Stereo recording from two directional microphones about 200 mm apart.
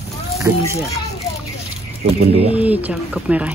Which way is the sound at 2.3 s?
30° right (ahead or behind).